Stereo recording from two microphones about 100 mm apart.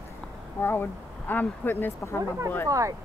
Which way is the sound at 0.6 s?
25° left (ahead or behind).